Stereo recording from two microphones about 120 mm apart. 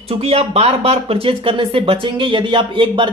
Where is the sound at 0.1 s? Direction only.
55° right (ahead or behind).